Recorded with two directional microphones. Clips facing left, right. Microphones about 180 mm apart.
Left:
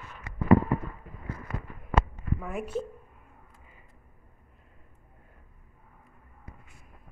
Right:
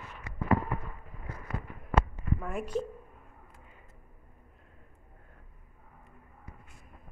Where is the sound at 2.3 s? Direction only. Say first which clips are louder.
Left 1 dB; 5° left (ahead or behind).